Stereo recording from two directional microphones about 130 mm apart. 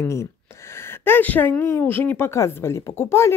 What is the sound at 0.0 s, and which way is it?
Speech, 20° left (ahead or behind).